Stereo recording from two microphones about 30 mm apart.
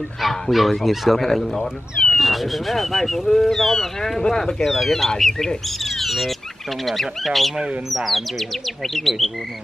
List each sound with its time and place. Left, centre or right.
0.2 s speech: centre
1.3 s speech: centre
4.2 s speech: left
4.6 s speech: centre
5.9 s bird: centre
6.9 s speech: centre